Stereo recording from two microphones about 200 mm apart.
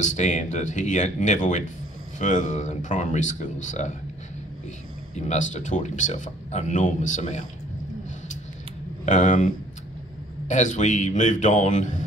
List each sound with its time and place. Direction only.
0.0 s speech: 40° left (ahead or behind)
5.1 s speech: 35° left (ahead or behind)
9.0 s speech: 40° left (ahead or behind)
10.5 s speech: 35° left (ahead or behind)